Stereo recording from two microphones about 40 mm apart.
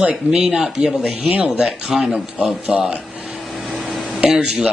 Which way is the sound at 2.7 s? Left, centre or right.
Right.